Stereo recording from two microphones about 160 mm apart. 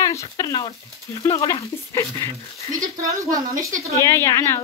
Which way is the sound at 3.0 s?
20° right (ahead or behind).